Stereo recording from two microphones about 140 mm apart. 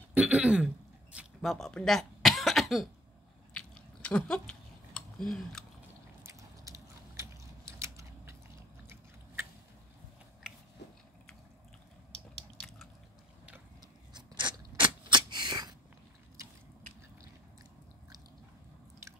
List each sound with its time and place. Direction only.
0.1 s throat clearing: 10° right (ahead or behind)
1.1 s cough: centre (ahead or behind)
3.5 s chewing: 5° left (ahead or behind)
6.2 s biting: 20° right (ahead or behind)
14.1 s biting: 35° right (ahead or behind)
15.0 s a sound: 35° right (ahead or behind)